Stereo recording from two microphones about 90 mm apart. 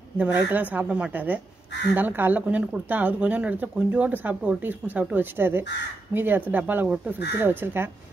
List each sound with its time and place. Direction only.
0.2 s a woman's voice: 20° right (ahead or behind)